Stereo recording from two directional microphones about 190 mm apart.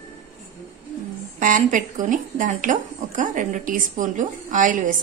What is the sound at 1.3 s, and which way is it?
Speech, 45° right (ahead or behind).